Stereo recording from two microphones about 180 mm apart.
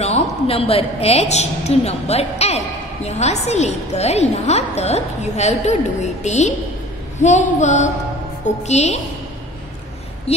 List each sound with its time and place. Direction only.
0.0 s a woman's voice: 35° left (ahead or behind)